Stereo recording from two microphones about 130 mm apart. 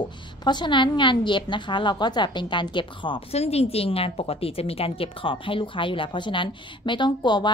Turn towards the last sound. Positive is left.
turn(degrees=35)  # may be behind; listen again after turning